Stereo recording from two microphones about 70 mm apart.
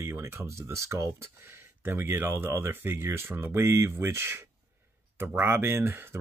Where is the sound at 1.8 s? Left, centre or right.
Right.